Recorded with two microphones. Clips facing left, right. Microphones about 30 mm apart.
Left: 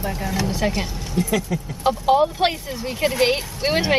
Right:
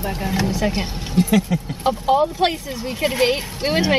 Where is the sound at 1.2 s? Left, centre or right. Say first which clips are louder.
Right 4 dB; right.